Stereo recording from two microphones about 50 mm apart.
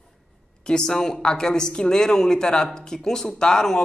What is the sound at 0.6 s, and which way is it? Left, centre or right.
A woman's voice, centre.